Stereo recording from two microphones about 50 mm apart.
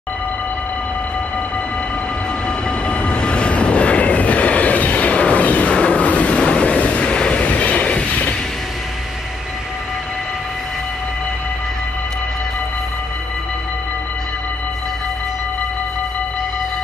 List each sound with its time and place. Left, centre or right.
2.9 s vehicle: left